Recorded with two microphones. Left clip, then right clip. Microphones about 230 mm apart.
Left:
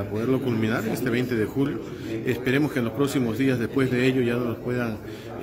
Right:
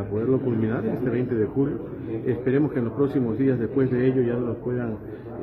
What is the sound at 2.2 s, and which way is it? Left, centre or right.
A man's voice, centre.